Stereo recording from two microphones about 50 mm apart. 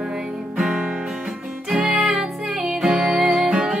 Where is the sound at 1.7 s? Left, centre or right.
Centre.